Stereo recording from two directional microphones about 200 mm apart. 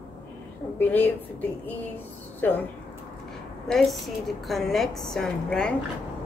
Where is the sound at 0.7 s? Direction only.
10° left (ahead or behind).